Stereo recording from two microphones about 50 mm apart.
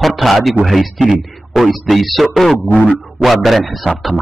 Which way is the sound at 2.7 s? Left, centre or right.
Left.